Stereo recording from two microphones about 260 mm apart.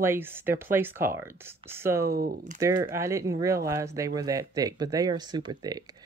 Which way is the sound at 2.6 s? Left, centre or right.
Centre.